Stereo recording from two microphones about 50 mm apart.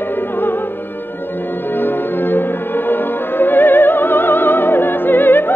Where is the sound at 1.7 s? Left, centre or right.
Left.